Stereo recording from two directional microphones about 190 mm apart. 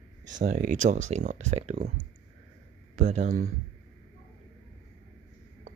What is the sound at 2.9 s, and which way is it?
Speech, 40° right (ahead or behind).